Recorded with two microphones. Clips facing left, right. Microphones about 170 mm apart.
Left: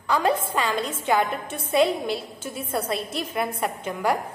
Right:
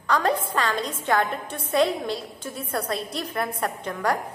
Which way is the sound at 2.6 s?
25° left (ahead or behind).